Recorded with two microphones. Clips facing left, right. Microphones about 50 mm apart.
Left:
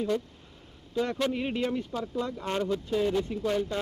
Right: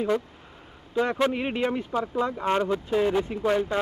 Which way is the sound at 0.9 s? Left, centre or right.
Right.